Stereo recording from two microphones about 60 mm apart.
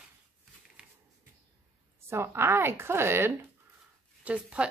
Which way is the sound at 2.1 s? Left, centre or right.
Right.